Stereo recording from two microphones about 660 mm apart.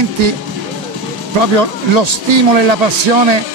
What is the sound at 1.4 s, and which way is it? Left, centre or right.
Speech, right.